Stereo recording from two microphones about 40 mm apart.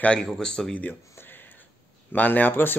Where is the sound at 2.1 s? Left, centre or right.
Left.